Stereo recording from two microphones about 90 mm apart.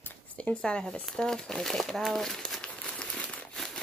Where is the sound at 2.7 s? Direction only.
15° left (ahead or behind).